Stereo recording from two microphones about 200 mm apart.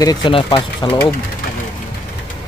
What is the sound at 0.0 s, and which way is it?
Speech, 20° left (ahead or behind).